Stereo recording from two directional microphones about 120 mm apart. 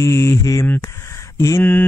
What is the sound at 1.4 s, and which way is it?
Speech, 20° left (ahead or behind).